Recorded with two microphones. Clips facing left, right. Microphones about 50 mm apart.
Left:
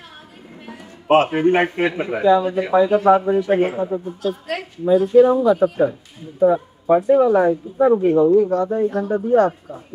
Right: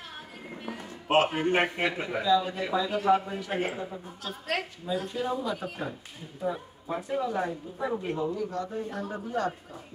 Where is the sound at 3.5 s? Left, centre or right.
Left.